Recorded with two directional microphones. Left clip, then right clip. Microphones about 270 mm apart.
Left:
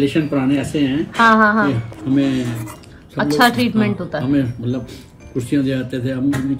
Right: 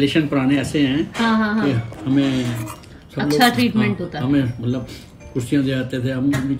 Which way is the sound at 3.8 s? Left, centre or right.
Centre.